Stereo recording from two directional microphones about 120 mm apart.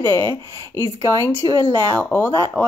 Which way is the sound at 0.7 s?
20° left (ahead or behind).